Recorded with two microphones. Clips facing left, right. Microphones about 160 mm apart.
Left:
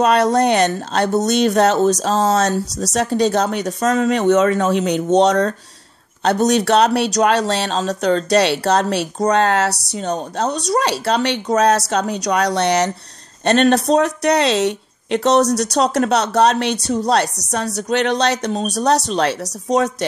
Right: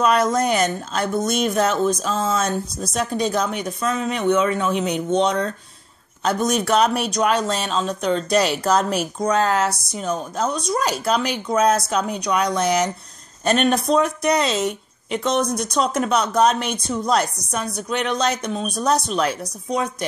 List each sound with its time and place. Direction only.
0.0 s speech: 70° left (ahead or behind)
3.9 s speech: 90° left
6.2 s speech: 75° left (ahead or behind)
8.3 s speech: 75° left (ahead or behind)